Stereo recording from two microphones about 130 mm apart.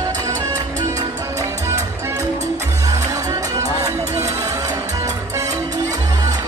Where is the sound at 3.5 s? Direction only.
25° right (ahead or behind).